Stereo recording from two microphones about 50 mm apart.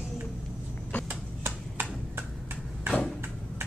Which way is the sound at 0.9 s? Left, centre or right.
Left.